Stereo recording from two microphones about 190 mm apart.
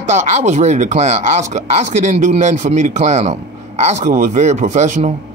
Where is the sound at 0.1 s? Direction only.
40° right (ahead or behind).